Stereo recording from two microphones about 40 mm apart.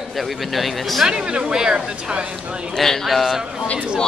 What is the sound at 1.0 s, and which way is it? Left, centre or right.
Speech, right.